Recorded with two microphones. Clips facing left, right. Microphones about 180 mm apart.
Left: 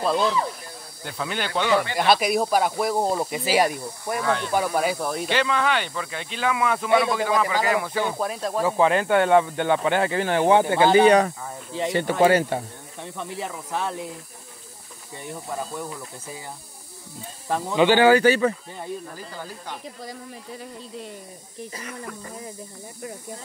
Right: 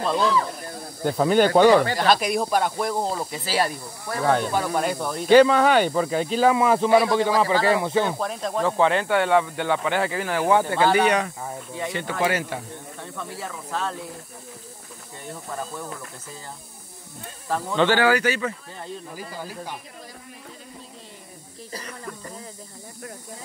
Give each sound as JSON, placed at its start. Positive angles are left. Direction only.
{"t": 1.0, "sound": "speech", "side_deg": -45}
{"t": 2.0, "sound": "speech", "side_deg": 5}
{"t": 4.2, "sound": "speech", "side_deg": -45}
{"t": 4.6, "sound": "speech", "side_deg": 5}
{"t": 5.3, "sound": "speech", "side_deg": -40}
{"t": 8.2, "sound": "speech", "side_deg": 5}
{"t": 9.1, "sound": "speech", "side_deg": 25}
{"t": 13.0, "sound": "speech", "side_deg": 20}
{"t": 17.5, "sound": "speech", "side_deg": 15}
{"t": 19.1, "sound": "speech", "side_deg": -10}